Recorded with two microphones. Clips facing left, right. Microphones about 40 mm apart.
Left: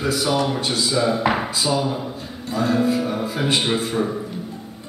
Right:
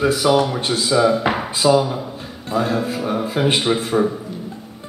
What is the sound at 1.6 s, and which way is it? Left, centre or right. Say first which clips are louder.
Speech: right 9 dB; right.